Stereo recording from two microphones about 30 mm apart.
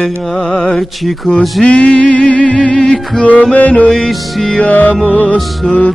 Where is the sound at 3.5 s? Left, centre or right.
Left.